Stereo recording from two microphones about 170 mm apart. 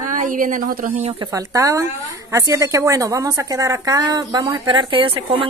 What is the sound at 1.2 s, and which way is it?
A woman's voice, 20° right (ahead or behind).